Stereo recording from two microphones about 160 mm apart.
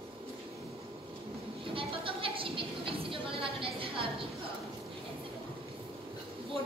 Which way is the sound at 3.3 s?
35° right (ahead or behind).